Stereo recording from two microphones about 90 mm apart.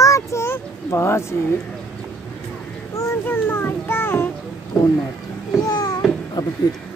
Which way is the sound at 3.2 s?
25° left (ahead or behind).